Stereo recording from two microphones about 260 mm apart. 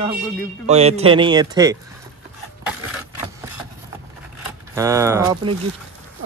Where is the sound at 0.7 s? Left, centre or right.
Right.